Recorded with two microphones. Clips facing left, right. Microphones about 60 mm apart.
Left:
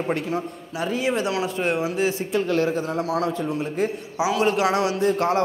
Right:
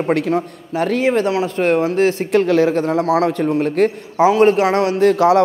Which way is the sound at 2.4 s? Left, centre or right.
Right.